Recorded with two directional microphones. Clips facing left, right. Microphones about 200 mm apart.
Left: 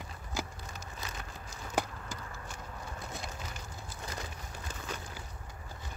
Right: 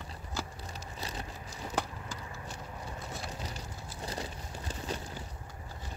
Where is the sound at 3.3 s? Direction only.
35° right (ahead or behind).